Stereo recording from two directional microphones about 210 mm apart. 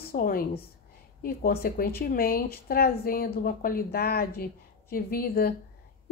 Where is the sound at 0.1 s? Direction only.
45° left (ahead or behind).